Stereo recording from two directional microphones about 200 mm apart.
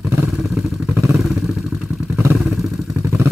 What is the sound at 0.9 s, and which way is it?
Vehicle, 15° right (ahead or behind).